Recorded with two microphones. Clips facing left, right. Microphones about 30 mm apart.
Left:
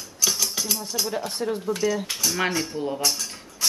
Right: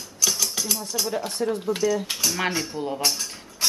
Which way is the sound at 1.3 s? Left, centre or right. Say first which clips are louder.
Right 1 dB; centre.